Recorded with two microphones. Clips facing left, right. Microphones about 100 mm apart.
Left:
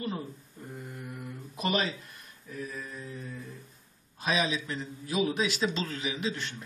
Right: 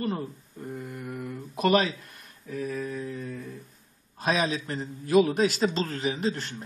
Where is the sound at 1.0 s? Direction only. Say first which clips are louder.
Right 6 dB; 50° right (ahead or behind).